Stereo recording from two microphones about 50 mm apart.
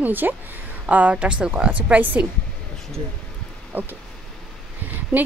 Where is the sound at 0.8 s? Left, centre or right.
Right.